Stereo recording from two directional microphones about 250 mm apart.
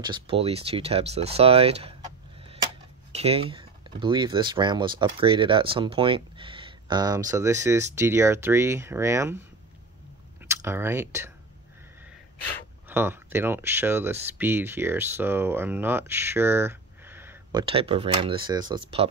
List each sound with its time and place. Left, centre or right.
0.0 s speech: centre
3.1 s speech: right
10.4 s speech: centre
12.8 s speech: centre